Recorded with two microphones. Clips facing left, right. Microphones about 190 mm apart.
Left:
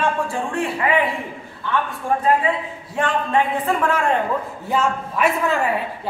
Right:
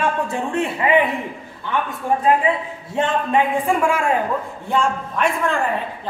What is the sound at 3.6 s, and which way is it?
Speech, 10° right (ahead or behind).